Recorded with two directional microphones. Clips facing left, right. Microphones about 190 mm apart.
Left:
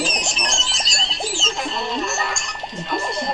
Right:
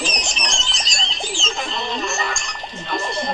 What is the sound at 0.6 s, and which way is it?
Music, 5° left (ahead or behind).